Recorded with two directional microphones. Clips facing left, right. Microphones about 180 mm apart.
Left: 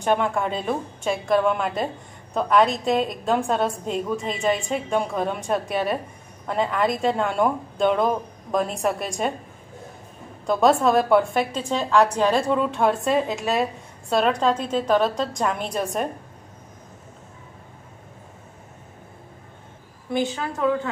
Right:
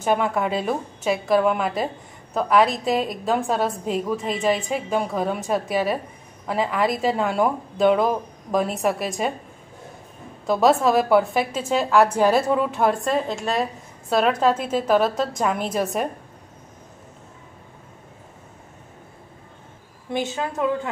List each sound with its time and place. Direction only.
0.0 s a woman's voice: 5° right (ahead or behind)
10.4 s a woman's voice: centre (ahead or behind)
20.1 s a woman's voice: 20° right (ahead or behind)